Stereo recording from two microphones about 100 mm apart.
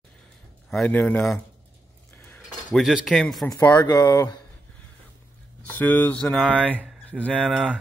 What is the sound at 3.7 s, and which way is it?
Speech, 40° left (ahead or behind).